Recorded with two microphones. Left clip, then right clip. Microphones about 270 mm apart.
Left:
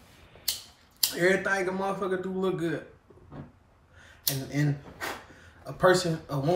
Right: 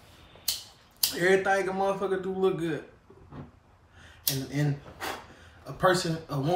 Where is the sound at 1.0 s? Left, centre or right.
Centre.